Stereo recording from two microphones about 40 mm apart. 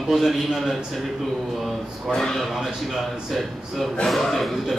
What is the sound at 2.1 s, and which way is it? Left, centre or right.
Speech, centre.